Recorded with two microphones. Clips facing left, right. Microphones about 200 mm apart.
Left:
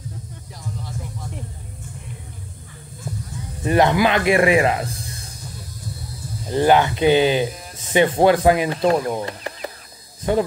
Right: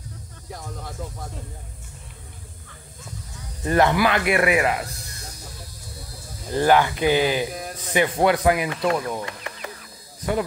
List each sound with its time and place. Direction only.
3.6 s speech: 20° left (ahead or behind)
6.5 s speech: 20° left (ahead or behind)